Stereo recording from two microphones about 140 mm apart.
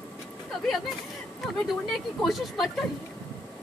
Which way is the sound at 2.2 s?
Centre (ahead or behind).